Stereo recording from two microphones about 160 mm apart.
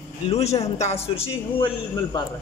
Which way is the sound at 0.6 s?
40° left (ahead or behind).